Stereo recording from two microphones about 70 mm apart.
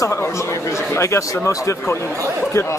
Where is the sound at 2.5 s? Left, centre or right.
Left.